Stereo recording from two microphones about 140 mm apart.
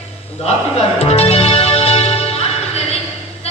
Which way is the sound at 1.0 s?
45° left (ahead or behind).